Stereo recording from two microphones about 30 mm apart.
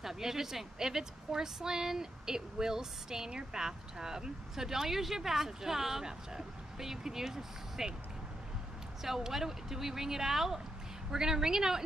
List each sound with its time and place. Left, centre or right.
0.0 s a woman's voice: centre
9.0 s a woman's voice: centre